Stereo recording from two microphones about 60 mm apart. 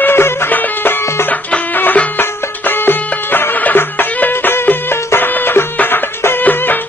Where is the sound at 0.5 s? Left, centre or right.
Left.